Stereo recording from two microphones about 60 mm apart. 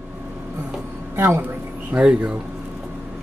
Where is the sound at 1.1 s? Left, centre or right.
Right.